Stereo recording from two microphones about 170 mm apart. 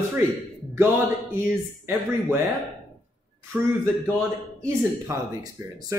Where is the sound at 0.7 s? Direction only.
15° right (ahead or behind).